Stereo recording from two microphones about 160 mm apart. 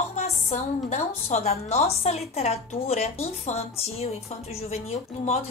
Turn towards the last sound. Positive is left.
turn(degrees=40)  # may be behind; listen again after turning